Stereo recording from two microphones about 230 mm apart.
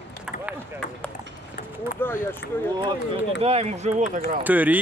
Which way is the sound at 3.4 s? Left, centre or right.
Right.